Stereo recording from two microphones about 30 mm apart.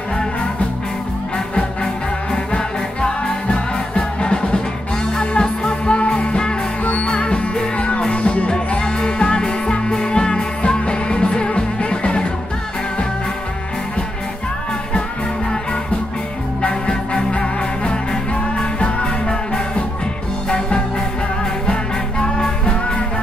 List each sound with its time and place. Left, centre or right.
2.3 s music: left
6.8 s music: left
7.1 s music: left
7.7 s music: left
8.5 s music: left
16.6 s music: left
22.2 s music: left